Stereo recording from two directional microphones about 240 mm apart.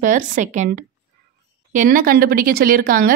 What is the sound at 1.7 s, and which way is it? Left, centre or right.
Speech, right.